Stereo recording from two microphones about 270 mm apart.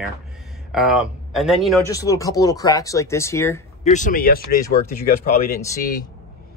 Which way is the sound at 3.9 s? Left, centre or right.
Left.